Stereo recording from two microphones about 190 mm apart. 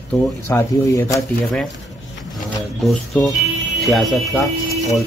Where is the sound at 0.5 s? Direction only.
15° left (ahead or behind).